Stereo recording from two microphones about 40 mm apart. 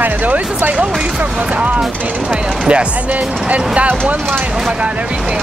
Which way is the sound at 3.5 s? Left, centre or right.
Right.